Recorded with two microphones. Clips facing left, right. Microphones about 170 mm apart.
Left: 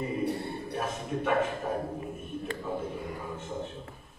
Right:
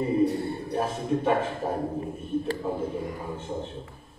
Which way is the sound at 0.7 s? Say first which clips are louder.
Right 7 dB; 30° right (ahead or behind).